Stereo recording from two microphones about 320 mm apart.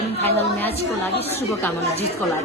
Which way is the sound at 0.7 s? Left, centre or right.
Centre.